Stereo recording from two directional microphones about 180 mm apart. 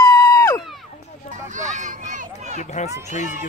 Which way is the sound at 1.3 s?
45° right (ahead or behind).